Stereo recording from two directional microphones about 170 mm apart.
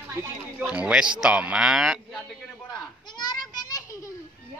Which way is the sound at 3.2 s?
25° left (ahead or behind).